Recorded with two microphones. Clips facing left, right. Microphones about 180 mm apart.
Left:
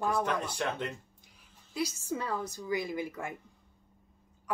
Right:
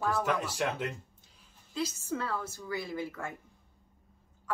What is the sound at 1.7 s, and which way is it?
A woman's voice, 15° left (ahead or behind).